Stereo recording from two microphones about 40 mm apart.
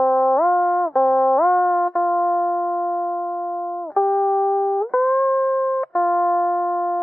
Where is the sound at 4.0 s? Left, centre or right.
Centre.